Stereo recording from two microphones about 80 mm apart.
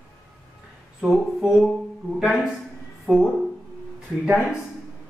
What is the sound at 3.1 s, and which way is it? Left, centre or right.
Speech, centre.